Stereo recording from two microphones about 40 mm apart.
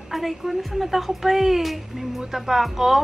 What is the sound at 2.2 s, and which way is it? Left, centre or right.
Speech, centre.